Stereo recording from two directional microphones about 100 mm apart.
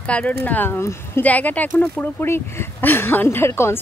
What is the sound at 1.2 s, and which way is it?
Speech, 15° left (ahead or behind).